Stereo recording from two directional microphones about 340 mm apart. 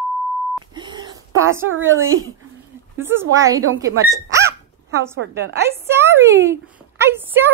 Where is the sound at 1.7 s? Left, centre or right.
Right.